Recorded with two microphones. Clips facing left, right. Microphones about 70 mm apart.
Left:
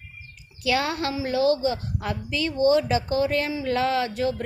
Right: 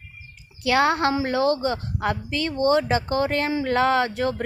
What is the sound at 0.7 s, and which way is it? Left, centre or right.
Speech, right.